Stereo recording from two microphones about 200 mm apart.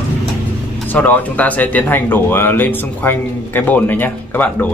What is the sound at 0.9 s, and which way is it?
Speech, 10° left (ahead or behind).